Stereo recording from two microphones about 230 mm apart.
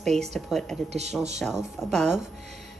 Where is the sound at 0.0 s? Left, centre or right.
Centre.